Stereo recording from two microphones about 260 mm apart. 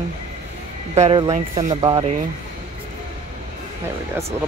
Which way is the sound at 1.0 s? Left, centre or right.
Centre.